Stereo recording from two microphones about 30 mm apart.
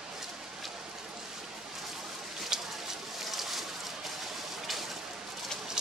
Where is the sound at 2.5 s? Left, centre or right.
Centre.